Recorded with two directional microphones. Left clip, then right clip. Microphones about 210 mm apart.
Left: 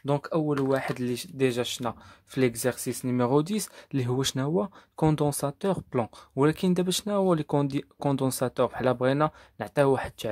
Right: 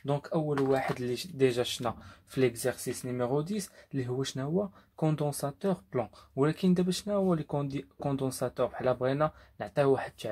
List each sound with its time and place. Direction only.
0.0 s speech: 45° left (ahead or behind)